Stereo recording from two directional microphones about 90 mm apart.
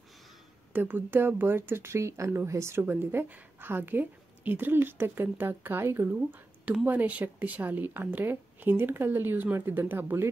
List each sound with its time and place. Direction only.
0.7 s speech: 20° right (ahead or behind)